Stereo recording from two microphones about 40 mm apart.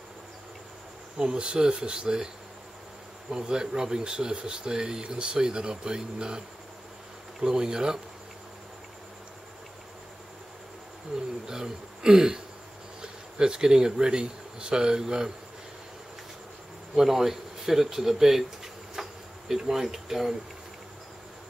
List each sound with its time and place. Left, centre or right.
1.1 s speech: right
3.3 s speech: centre
7.4 s speech: centre
11.1 s a man's voice: centre
16.9 s speech: centre